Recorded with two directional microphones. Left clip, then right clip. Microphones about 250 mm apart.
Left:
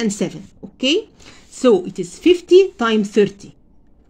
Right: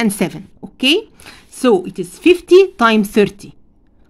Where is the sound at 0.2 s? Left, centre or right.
Centre.